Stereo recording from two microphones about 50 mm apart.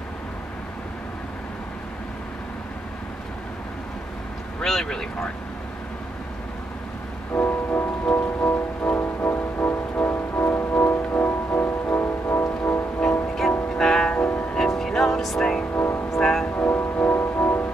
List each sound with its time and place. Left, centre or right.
4.6 s speech: centre
7.3 s music: left
13.7 s music: centre
14.1 s music: left
14.5 s music: centre
15.7 s vehicle: left
16.2 s vehicle: centre
16.4 s music: left